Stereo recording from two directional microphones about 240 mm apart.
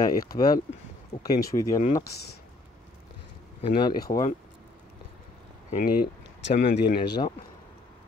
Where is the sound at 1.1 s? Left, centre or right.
Centre.